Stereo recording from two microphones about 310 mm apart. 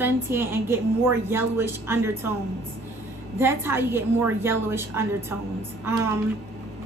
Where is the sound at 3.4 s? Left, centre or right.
Centre.